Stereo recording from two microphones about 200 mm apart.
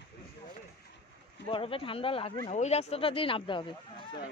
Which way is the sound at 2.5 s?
35° left (ahead or behind).